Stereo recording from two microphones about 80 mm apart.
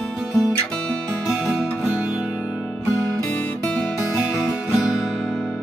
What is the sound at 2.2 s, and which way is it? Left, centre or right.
Music, centre.